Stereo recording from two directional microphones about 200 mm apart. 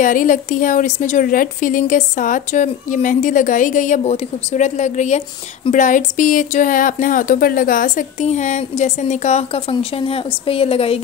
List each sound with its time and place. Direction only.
0.0 s speech: 40° left (ahead or behind)